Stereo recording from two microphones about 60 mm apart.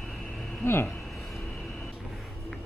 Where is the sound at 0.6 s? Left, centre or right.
Left.